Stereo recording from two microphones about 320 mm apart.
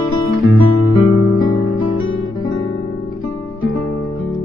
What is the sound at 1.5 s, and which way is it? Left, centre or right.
Guitar, left.